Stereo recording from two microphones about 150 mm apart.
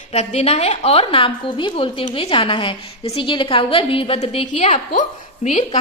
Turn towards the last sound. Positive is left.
turn(degrees=50)  # may be behind; listen again after turning